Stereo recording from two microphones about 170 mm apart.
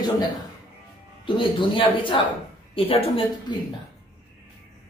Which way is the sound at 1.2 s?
30° left (ahead or behind).